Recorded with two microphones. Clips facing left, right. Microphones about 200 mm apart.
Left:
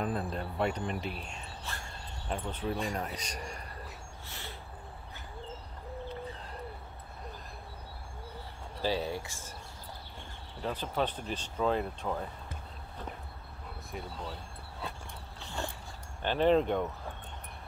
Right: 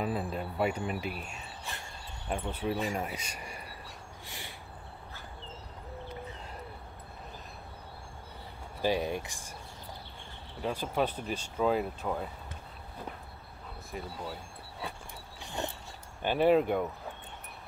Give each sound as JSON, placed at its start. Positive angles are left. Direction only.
{"t": 0.0, "sound": "speech", "side_deg": -5}
{"t": 4.3, "sound": "a sound", "side_deg": -15}
{"t": 8.8, "sound": "speech", "side_deg": -15}
{"t": 10.6, "sound": "speech", "side_deg": -10}
{"t": 13.9, "sound": "speech", "side_deg": -5}
{"t": 15.4, "sound": "dog", "side_deg": -20}
{"t": 16.2, "sound": "speech", "side_deg": -10}